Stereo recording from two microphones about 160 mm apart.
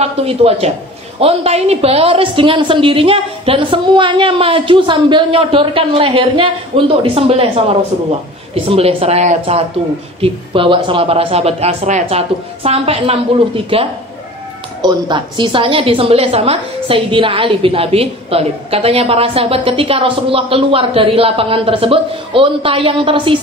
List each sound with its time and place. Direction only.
0.0 s a woman's voice: 40° right (ahead or behind)
8.6 s a woman's voice: 40° right (ahead or behind)
10.2 s a woman's voice: 35° right (ahead or behind)